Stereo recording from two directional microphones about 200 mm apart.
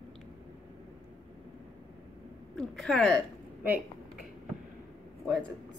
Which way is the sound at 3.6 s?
10° right (ahead or behind).